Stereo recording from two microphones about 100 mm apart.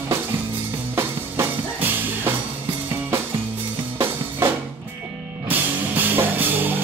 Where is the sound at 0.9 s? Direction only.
25° right (ahead or behind).